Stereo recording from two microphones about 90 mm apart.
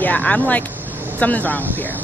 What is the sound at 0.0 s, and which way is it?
Speech, 15° left (ahead or behind).